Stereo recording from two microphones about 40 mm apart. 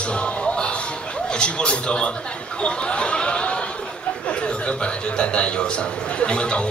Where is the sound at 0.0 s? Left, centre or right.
Left.